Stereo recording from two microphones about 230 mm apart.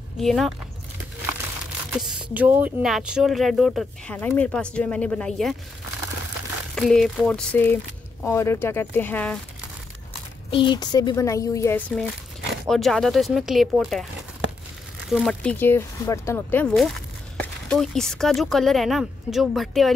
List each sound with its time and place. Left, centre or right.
0.2 s speech: centre
1.9 s speech: centre
6.7 s speech: centre
10.5 s speech: centre
12.6 s speech: centre
15.0 s speech: centre